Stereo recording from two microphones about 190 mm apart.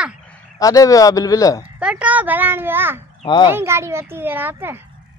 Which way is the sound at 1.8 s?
5° right (ahead or behind).